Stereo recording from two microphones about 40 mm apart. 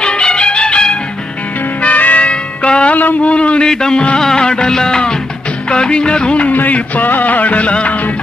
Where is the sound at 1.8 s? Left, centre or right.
Left.